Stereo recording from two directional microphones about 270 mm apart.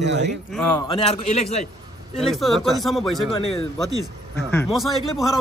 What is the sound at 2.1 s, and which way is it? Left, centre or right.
Speech, centre.